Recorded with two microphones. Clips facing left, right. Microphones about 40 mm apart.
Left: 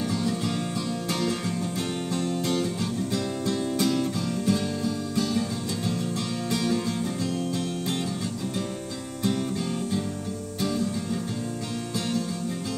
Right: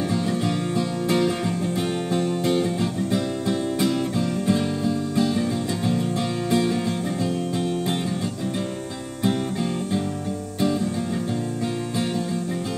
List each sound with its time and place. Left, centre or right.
0.1 s music: centre